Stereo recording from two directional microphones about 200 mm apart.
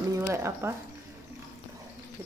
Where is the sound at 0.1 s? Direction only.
15° right (ahead or behind).